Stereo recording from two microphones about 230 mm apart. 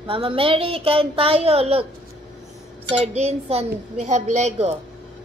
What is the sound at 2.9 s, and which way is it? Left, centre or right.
A woman's voice, right.